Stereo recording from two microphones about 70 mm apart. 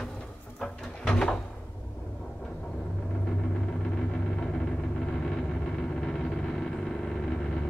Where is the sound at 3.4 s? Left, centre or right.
Centre.